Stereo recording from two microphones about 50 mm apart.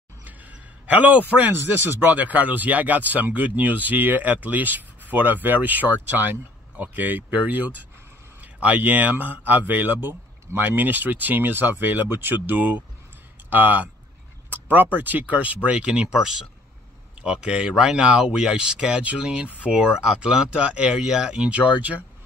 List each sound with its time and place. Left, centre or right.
0.8 s speech: right
16.1 s speech: centre; by 22.0 s right